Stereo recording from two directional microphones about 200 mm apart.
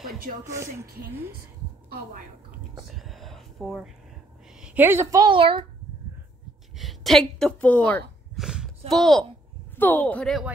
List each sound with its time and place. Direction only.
0.5 s a woman's voice: 15° right (ahead or behind)
3.0 s a sound: centre (ahead or behind)
4.6 s a woman's voice: 5° right (ahead or behind); by 5.7 s 25° right (ahead or behind)
6.8 s a woman's voice: centre (ahead or behind)
8.4 s a sound: centre (ahead or behind)
9.8 s speech: 10° left (ahead or behind)